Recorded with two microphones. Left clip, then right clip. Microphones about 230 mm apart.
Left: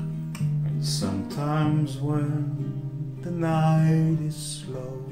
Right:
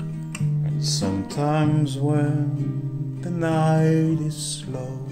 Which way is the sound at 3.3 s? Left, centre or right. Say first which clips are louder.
Right 3 dB; right.